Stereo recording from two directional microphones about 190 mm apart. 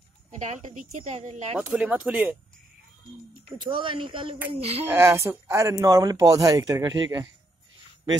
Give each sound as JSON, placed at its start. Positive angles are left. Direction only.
{"t": 0.4, "sound": "speech", "side_deg": -40}
{"t": 1.6, "sound": "speech", "side_deg": -5}
{"t": 3.6, "sound": "speech", "side_deg": -25}
{"t": 4.8, "sound": "speech", "side_deg": -15}